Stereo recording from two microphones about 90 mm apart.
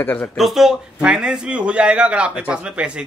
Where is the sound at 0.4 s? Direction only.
5° right (ahead or behind).